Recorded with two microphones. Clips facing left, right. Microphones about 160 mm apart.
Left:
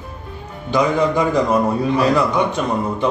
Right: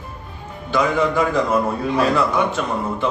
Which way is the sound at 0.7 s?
20° left (ahead or behind).